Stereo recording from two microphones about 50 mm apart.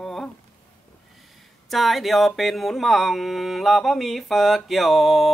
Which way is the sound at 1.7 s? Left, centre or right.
Centre.